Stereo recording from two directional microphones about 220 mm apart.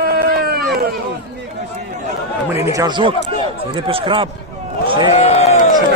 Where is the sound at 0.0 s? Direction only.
45° right (ahead or behind).